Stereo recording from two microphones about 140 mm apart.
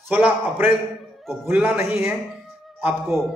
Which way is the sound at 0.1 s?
10° right (ahead or behind).